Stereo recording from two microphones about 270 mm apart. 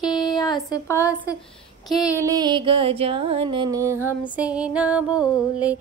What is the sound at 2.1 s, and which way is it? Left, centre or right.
Music, centre.